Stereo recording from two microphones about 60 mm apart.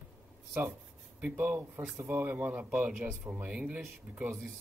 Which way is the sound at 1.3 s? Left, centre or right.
Right.